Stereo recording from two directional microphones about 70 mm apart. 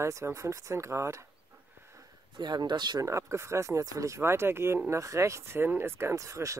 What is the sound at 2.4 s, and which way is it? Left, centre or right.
Speech, right.